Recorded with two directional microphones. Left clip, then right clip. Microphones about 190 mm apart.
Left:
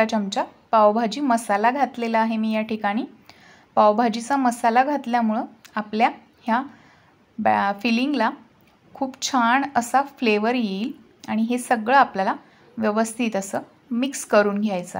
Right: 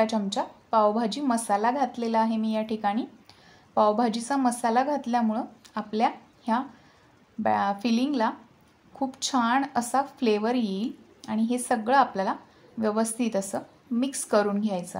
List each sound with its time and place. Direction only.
0.0 s a woman's voice: 15° left (ahead or behind)